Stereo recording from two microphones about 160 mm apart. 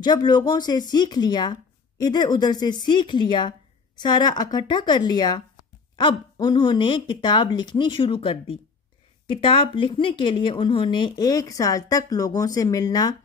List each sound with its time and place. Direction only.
0.0 s speech: 25° left (ahead or behind)